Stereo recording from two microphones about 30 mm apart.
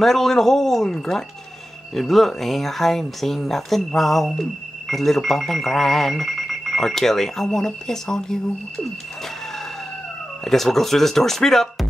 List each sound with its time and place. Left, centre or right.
0.0 s speech: centre
2.0 s speech: centre
10.4 s speech: centre